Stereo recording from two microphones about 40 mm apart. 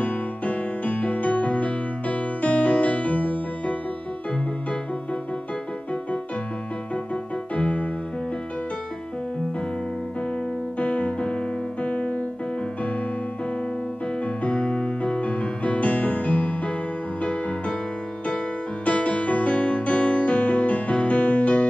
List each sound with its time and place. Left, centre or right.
0.0 s music: left
7.5 s piano: left
10.8 s keyboard: left
11.8 s music: left
14.2 s music: left
17.2 s music: left
18.9 s music: left